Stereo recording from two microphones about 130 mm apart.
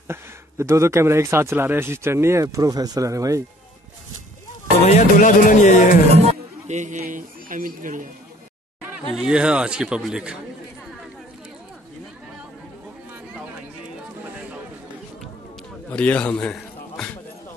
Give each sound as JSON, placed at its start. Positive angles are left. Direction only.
{"t": 0.1, "sound": "speech", "side_deg": -20}
{"t": 4.8, "sound": "speech", "side_deg": 70}
{"t": 6.1, "sound": "a man's voice", "side_deg": -60}
{"t": 9.1, "sound": "a man's voice", "side_deg": -5}
{"t": 15.9, "sound": "a man's voice", "side_deg": 10}
{"t": 16.3, "sound": "a sound", "side_deg": 10}